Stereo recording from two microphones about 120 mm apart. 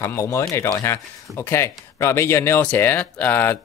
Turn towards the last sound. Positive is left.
turn(degrees=15)  # may be behind; listen again after turning